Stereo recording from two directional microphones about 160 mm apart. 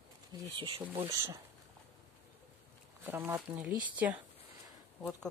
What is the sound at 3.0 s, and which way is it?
Speech, 15° right (ahead or behind).